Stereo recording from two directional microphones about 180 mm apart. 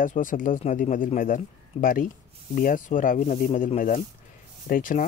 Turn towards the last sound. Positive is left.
turn(degrees=50)  # may be behind; listen again after turning